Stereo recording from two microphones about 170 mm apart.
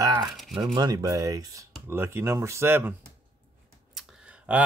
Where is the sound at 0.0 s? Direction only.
20° right (ahead or behind).